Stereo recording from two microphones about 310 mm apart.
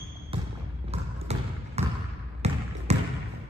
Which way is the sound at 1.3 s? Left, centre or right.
Centre.